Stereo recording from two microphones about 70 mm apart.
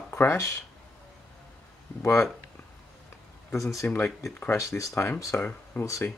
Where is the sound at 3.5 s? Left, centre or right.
Left.